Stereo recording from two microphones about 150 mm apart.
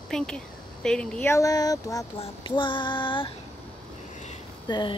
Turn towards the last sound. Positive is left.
turn(degrees=30)  # may be behind; listen again after turning